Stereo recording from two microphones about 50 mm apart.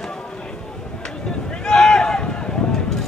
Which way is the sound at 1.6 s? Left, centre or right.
Centre.